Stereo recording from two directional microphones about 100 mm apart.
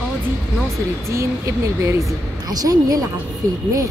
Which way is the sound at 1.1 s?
30° right (ahead or behind).